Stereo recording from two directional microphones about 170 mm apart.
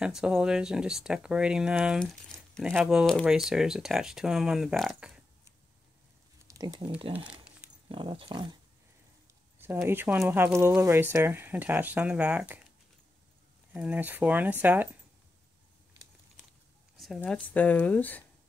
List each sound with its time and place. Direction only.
0.0 s speech: 5° right (ahead or behind)
6.4 s a sound: 20° right (ahead or behind)
7.9 s speech: 30° right (ahead or behind)
9.8 s speech: 15° right (ahead or behind)
13.7 s speech: 10° right (ahead or behind)
17.0 s speech: 5° left (ahead or behind)